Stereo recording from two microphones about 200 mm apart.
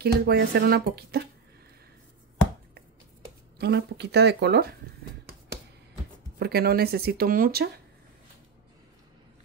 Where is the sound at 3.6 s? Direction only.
55° right (ahead or behind).